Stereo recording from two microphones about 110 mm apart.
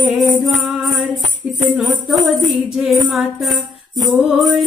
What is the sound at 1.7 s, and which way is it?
A woman's voice, centre (ahead or behind).